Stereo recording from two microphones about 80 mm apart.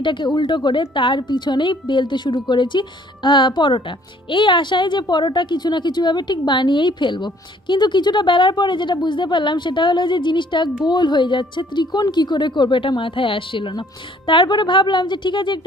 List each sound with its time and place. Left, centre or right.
0.0 s a woman's voice: left